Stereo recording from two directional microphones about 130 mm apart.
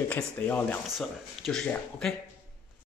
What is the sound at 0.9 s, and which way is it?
Speech, centre (ahead or behind).